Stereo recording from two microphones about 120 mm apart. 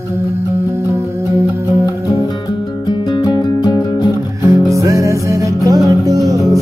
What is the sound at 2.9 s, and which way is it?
Music, 35° left (ahead or behind).